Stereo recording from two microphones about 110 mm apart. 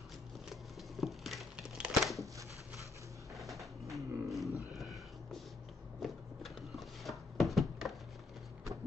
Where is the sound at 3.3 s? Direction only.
Centre (ahead or behind).